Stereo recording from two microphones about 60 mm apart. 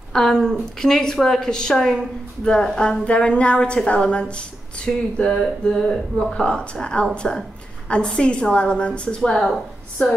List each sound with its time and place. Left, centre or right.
0.1 s a woman's voice: centre